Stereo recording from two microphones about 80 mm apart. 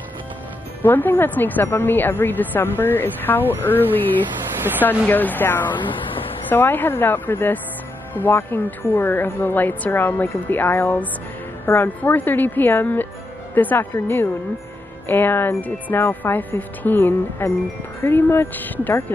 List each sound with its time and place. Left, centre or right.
0.8 s a woman's voice: left
5.0 s a woman's voice: left
12.0 s a woman's voice: left